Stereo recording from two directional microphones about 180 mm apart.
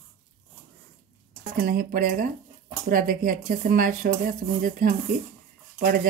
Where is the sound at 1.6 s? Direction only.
55° right (ahead or behind).